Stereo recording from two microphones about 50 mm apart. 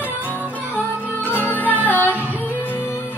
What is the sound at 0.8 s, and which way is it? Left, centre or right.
Music, left.